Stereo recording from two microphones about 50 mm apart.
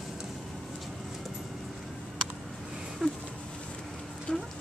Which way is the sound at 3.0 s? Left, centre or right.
Centre.